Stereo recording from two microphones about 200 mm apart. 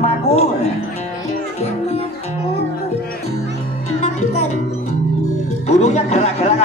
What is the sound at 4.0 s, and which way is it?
Music, 35° left (ahead or behind).